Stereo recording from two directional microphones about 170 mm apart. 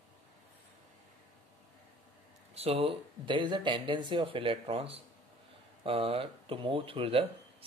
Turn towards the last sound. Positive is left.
turn(degrees=-35)  # may be behind; listen again after turning